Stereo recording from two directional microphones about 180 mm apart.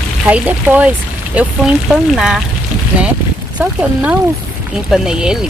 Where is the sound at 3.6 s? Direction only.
5° right (ahead or behind).